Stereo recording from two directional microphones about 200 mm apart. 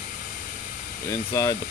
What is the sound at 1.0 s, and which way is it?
Speech, 15° left (ahead or behind).